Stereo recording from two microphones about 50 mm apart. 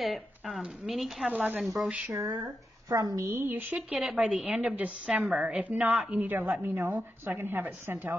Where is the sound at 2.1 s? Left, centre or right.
Right.